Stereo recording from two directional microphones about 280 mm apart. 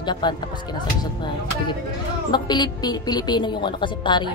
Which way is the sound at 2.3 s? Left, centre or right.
Centre.